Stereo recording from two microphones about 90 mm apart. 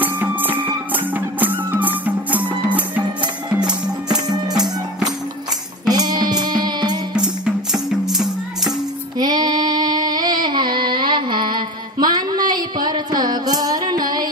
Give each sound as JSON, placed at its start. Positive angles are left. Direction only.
{"t": 0.0, "sound": "music", "side_deg": -20}
{"t": 3.5, "sound": "music", "side_deg": -10}
{"t": 5.9, "sound": "music", "side_deg": -50}
{"t": 7.2, "sound": "music", "side_deg": -10}
{"t": 9.2, "sound": "a sound", "side_deg": -50}